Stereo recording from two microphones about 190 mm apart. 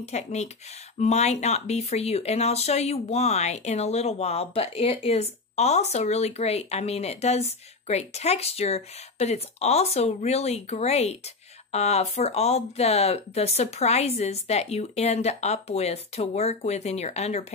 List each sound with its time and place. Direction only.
0.0 s speech: 35° left (ahead or behind)